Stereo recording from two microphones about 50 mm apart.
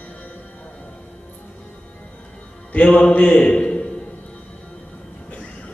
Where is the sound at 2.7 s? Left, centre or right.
Left.